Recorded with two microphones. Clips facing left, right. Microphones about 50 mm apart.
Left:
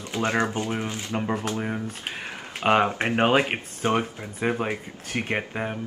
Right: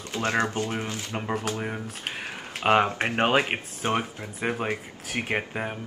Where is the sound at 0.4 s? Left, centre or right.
Centre.